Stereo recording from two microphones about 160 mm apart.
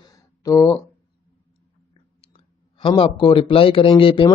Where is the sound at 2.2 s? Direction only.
35° left (ahead or behind).